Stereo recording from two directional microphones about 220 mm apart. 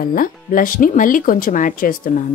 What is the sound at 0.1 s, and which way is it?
Speech, 40° left (ahead or behind).